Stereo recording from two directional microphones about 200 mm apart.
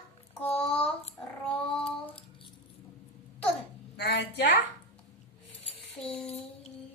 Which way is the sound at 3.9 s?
60° left (ahead or behind).